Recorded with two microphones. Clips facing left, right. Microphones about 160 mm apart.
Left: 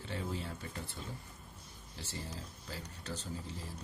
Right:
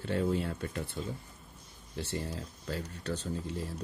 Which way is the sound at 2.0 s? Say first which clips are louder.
Right 8 dB; 65° right (ahead or behind).